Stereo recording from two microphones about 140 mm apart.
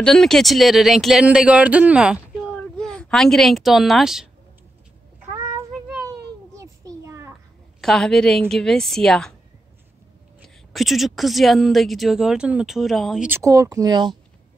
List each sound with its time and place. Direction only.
0.0 s speech: 5° left (ahead or behind)
2.5 s speech: 5° left (ahead or behind)
6.6 s a sound: 20° right (ahead or behind)
7.8 s speech: 5° left (ahead or behind)
10.7 s speech: centre (ahead or behind)
13.3 s speech: 20° right (ahead or behind)